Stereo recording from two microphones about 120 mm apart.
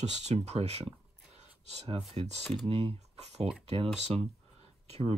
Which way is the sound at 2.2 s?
50° right (ahead or behind).